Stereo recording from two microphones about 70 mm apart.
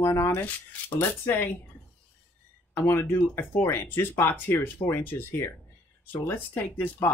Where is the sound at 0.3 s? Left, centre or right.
Left.